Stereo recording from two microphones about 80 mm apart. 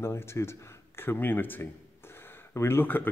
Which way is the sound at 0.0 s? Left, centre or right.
Left.